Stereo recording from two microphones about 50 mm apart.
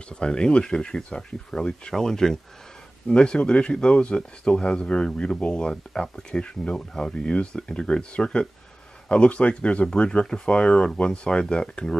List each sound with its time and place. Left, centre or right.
0.1 s speech: centre